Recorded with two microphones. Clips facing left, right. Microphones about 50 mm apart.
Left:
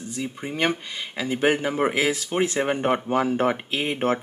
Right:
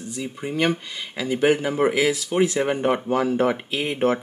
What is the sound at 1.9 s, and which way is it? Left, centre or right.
Speech, left.